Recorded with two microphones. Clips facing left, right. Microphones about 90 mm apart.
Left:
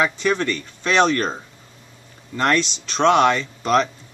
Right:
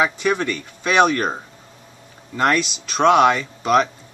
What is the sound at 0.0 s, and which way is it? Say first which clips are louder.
Speech: right 1 dB; 10° right (ahead or behind).